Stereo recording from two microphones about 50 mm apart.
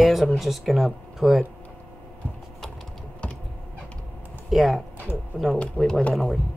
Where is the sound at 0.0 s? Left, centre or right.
Centre.